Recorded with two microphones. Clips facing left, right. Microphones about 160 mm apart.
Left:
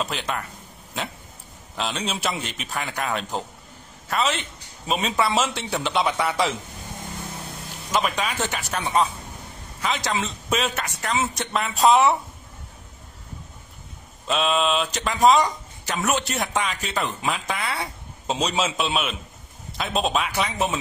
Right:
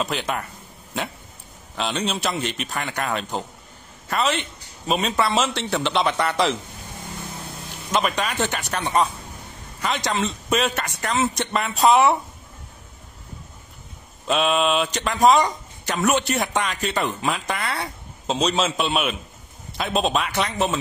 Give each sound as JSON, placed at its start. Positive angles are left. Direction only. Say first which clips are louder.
{"t": 0.0, "sound": "speech", "louder": "right 2 dB", "side_deg": 0}
{"t": 1.8, "sound": "speech", "louder": "right 2 dB", "side_deg": 0}
{"t": 7.9, "sound": "speech", "louder": "right 1 dB", "side_deg": 0}
{"t": 14.2, "sound": "speech", "louder": "right 2 dB", "side_deg": 0}